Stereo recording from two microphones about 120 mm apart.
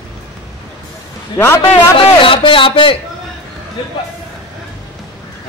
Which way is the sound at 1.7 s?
50° left (ahead or behind).